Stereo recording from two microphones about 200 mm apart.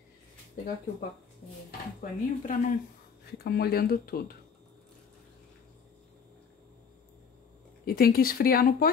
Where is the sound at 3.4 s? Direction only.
55° left (ahead or behind).